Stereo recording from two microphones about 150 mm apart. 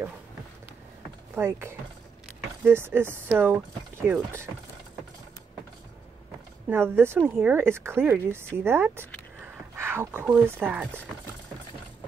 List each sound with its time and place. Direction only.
1.3 s speech: 15° right (ahead or behind)
6.7 s speech: 15° right (ahead or behind)